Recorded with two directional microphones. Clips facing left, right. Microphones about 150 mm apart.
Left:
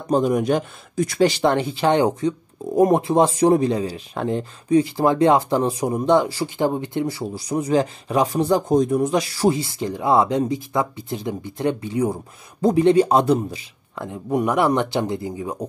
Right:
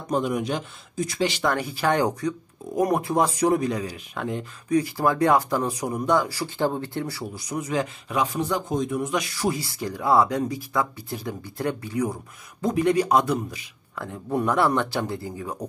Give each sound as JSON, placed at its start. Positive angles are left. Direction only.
{"t": 0.1, "sound": "speech", "side_deg": 40}
{"t": 1.4, "sound": "speech", "side_deg": 25}
{"t": 14.0, "sound": "speech", "side_deg": 15}